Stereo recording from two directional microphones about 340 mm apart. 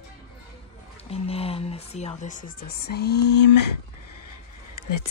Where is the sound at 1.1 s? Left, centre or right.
Centre.